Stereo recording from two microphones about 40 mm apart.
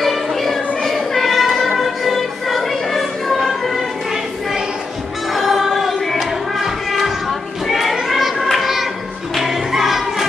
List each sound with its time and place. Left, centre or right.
0.0 s music: centre
5.3 s music: centre
7.6 s children playing: centre
8.1 s a sound: centre
9.3 s choir: centre